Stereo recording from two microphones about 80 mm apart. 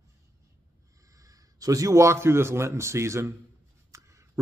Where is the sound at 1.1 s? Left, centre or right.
Right.